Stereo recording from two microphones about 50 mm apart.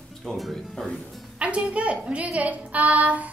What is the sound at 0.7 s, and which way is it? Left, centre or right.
Speech, centre.